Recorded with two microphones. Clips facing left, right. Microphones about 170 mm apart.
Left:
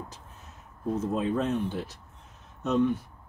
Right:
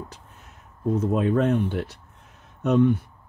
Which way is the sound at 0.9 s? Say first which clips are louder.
Right 5 dB; 60° right (ahead or behind).